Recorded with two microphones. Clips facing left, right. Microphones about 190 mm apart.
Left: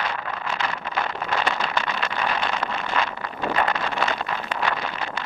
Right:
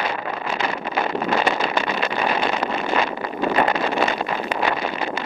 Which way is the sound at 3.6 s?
10° right (ahead or behind).